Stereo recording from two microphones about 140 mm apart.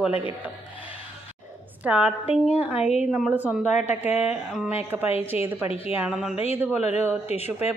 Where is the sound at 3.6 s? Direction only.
55° left (ahead or behind).